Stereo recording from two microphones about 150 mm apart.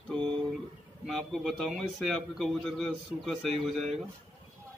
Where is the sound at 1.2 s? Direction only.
Centre (ahead or behind).